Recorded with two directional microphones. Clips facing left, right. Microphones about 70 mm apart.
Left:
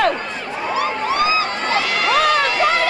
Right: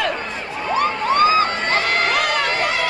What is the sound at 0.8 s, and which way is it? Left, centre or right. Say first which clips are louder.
Crowd: right 3 dB; right.